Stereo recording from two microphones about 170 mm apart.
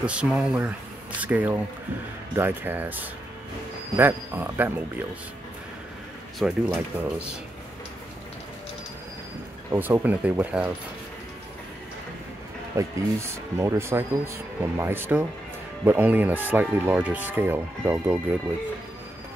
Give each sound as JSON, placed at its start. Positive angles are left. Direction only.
{"t": 0.0, "sound": "speech", "side_deg": -5}
{"t": 6.4, "sound": "speech", "side_deg": -5}
{"t": 9.7, "sound": "speech", "side_deg": -15}
{"t": 12.7, "sound": "speech", "side_deg": -15}